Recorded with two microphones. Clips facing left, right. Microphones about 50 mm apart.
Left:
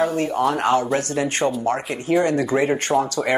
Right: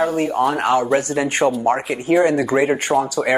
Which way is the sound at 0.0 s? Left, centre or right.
Centre.